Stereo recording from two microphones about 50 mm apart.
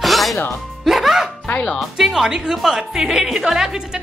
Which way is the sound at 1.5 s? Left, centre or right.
Left.